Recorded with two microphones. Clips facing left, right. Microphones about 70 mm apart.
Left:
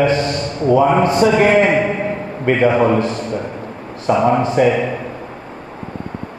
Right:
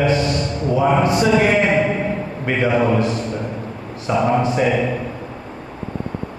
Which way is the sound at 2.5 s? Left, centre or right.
Left.